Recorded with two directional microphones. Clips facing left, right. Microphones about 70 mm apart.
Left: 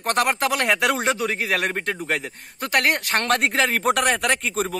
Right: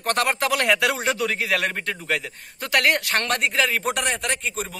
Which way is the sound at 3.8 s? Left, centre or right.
Left.